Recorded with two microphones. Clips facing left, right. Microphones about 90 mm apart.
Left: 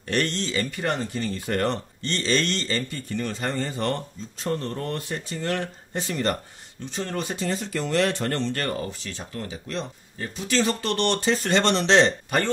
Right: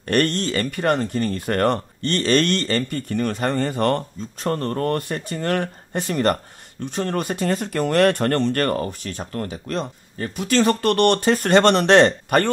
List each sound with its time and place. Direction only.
0.1 s speech: 55° right (ahead or behind)